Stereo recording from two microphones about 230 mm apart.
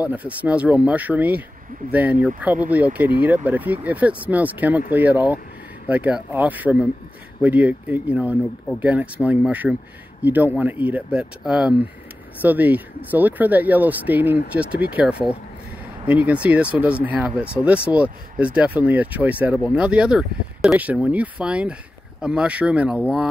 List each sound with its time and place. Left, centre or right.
0.0 s speech: centre
16.1 s speech: centre